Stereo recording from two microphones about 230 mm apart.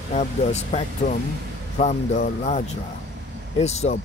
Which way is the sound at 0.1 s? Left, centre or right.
Left.